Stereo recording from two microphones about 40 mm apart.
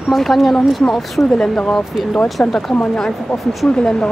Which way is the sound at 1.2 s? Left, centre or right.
Left.